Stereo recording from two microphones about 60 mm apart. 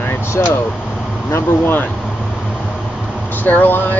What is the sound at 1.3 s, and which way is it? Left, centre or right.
Speech, left.